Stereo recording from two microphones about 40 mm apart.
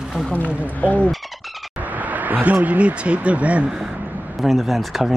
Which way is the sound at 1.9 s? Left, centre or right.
Right.